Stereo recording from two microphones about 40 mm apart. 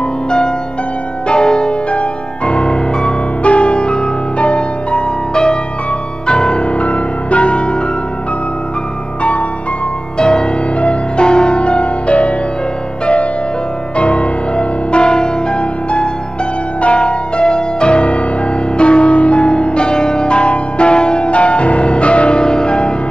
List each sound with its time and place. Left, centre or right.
1.2 s music: left
9.2 s music: left
10.1 s music: centre